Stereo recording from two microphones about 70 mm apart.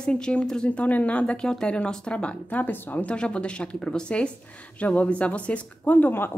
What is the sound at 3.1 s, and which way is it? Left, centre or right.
A woman's voice, centre.